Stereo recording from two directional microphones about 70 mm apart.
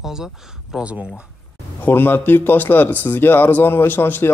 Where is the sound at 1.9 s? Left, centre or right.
Left.